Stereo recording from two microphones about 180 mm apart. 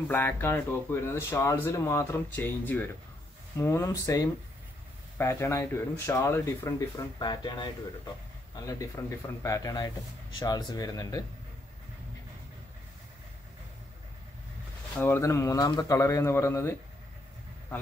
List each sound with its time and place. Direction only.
0.1 s speech: 10° left (ahead or behind)
15.0 s speech: 15° left (ahead or behind)